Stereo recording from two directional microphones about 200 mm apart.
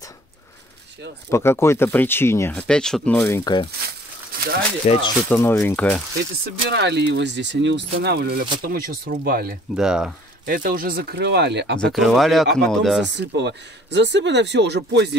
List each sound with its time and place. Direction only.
1.3 s speech: 10° left (ahead or behind)
3.3 s speech: 15° left (ahead or behind)
4.9 s speech: 35° left (ahead or behind)
5.3 s speech: 10° left (ahead or behind)
6.4 s speech: 60° right (ahead or behind)
9.8 s speech: 5° right (ahead or behind)
10.4 s speech: 45° right (ahead or behind)
11.8 s speech: centre (ahead or behind)
13.0 s speech: 60° right (ahead or behind)